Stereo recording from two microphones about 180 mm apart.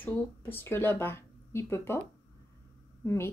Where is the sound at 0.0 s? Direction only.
10° left (ahead or behind).